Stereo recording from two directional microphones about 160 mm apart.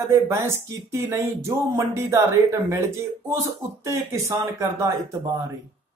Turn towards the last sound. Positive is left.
turn(degrees=-20)  # may be behind; listen again after turning